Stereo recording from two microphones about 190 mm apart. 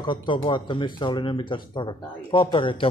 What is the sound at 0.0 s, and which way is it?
Speech, 25° left (ahead or behind).